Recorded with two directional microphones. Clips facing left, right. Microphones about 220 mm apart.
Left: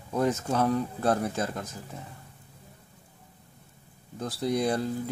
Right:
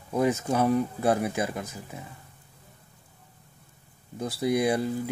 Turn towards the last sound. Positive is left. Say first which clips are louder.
# right 2 dB
turn(degrees=-10)  # may be behind; listen again after turning